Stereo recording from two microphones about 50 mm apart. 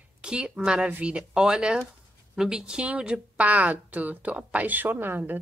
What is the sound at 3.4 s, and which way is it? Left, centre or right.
Speech, right.